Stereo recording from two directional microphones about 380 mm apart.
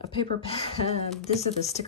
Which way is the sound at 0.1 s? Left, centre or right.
Centre.